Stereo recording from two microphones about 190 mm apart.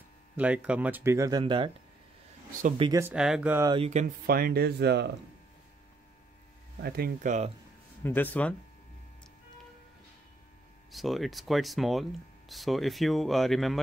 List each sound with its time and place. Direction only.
0.4 s speech: 5° right (ahead or behind); by 1.7 s 25° right (ahead or behind)
2.8 s speech: 15° right (ahead or behind)
3.2 s speech: 5° right (ahead or behind)
3.6 s speech: 25° right (ahead or behind)
3.9 s speech: 45° right (ahead or behind); by 5.1 s 60° right (ahead or behind)
6.8 s speech: 55° right (ahead or behind)
8.0 s speech: 10° left (ahead or behind)
10.9 s speech: centre (ahead or behind)